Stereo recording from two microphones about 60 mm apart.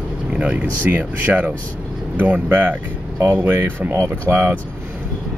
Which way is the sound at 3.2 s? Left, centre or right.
Right.